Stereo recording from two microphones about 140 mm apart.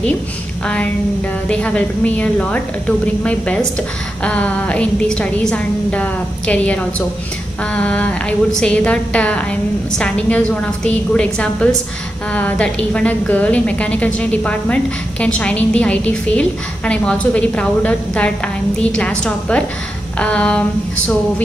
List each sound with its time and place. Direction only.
1.5 s a woman's voice: 10° left (ahead or behind)